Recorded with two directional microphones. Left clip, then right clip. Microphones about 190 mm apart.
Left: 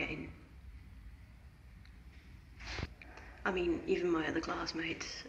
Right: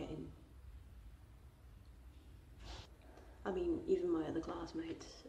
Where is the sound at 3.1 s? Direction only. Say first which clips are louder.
Left 6 dB; 15° right (ahead or behind).